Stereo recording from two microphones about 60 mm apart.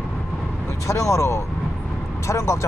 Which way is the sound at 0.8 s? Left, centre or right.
Left.